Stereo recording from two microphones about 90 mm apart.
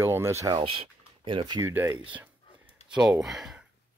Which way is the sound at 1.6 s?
25° right (ahead or behind).